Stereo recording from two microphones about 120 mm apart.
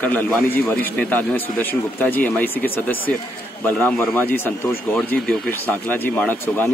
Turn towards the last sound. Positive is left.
turn(degrees=15)  # may be behind; listen again after turning